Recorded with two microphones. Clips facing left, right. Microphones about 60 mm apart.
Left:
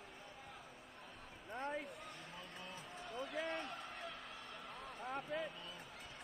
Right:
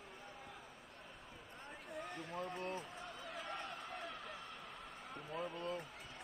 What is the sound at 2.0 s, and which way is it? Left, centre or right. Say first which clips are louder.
Run: right 7 dB; right.